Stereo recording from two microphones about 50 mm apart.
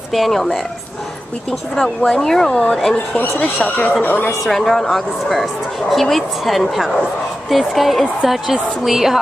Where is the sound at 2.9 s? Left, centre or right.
Left.